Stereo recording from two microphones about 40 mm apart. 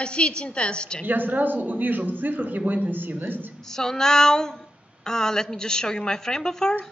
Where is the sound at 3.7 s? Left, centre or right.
Centre.